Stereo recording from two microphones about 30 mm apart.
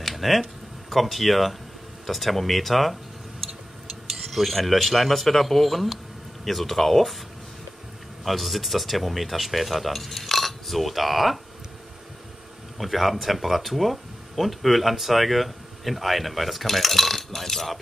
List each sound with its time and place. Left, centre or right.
0.0 s speech: centre
4.3 s speech: centre
8.2 s speech: centre
12.7 s speech: centre